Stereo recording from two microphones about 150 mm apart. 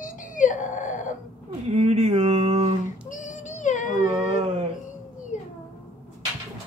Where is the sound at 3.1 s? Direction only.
55° left (ahead or behind).